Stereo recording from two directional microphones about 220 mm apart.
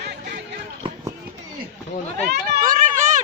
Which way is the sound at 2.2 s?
35° right (ahead or behind).